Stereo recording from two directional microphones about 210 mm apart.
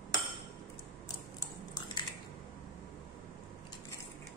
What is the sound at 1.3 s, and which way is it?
Biting, 20° left (ahead or behind).